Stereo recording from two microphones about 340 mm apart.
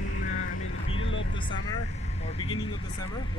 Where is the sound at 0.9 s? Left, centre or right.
Left.